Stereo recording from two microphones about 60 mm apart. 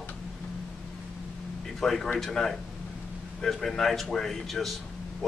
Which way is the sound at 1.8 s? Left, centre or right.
Centre.